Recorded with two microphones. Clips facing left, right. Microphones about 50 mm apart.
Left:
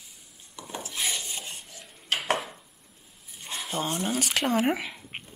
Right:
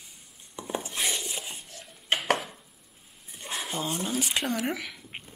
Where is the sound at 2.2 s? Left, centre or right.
Centre.